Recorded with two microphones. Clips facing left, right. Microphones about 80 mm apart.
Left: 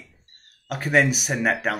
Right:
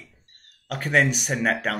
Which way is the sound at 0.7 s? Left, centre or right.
Centre.